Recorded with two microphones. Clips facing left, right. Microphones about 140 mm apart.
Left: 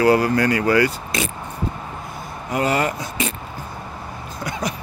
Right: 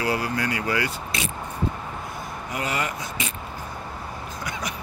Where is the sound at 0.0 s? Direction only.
50° left (ahead or behind).